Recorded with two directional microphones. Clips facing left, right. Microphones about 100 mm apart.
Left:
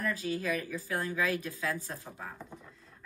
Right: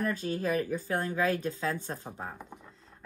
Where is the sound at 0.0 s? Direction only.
40° right (ahead or behind).